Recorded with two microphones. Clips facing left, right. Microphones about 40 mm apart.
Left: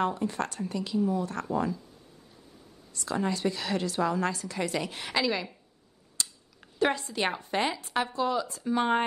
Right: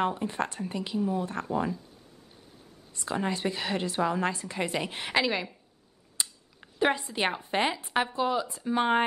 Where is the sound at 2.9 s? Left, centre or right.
Right.